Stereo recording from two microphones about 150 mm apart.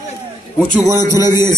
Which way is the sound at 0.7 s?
20° right (ahead or behind).